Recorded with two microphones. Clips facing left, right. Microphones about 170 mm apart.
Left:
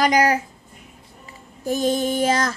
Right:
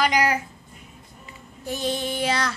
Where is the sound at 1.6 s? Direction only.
45° left (ahead or behind).